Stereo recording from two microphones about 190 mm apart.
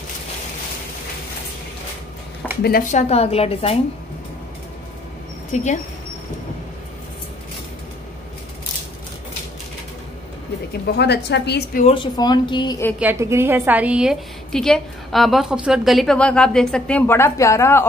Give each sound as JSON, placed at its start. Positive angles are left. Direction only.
{"t": 2.4, "sound": "a sound", "side_deg": 5}
{"t": 2.9, "sound": "a woman's voice", "side_deg": 35}
{"t": 5.5, "sound": "speech", "side_deg": 40}
{"t": 11.0, "sound": "a woman's voice", "side_deg": 60}
{"t": 11.8, "sound": "a woman's voice", "side_deg": 25}
{"t": 13.0, "sound": "a woman's voice", "side_deg": -15}